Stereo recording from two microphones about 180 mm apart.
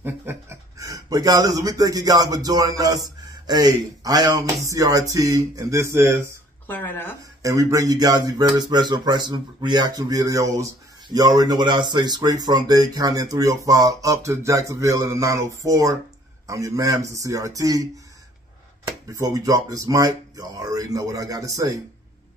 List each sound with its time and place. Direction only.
0.0 s speech: 10° right (ahead or behind)
4.6 s a sound: 20° right (ahead or behind)
6.7 s speech: 10° left (ahead or behind)
7.4 s speech: 20° right (ahead or behind)
16.4 s a sound: 20° right (ahead or behind)
19.1 s speech: 20° right (ahead or behind)